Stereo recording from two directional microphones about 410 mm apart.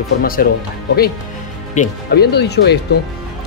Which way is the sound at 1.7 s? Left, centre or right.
Left.